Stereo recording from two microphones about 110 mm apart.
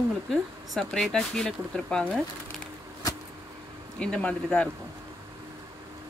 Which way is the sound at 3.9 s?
10° left (ahead or behind).